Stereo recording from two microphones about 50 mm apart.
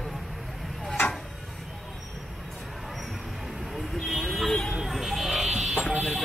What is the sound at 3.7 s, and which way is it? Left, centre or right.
Vehicle, centre.